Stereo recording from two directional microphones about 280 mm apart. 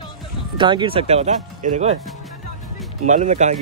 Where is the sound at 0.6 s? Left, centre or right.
Centre.